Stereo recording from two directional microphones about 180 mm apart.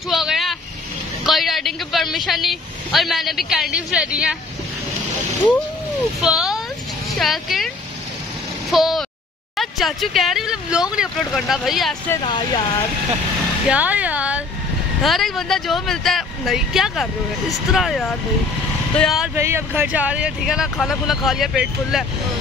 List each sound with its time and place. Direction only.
0.1 s vehicle: centre (ahead or behind)
1.2 s speech: centre (ahead or behind)
6.2 s speech: centre (ahead or behind)
12.3 s speech: 25° left (ahead or behind)
13.7 s speech: 10° right (ahead or behind)
19.3 s speech: 15° right (ahead or behind)